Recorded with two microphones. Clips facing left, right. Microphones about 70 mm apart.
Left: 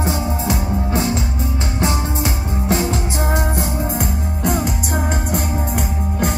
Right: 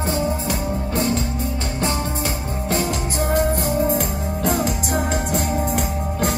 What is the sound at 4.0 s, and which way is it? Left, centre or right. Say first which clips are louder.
Music: left 1 dB; centre.